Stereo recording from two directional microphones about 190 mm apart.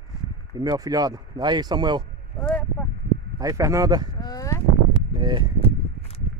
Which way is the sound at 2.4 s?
5° left (ahead or behind).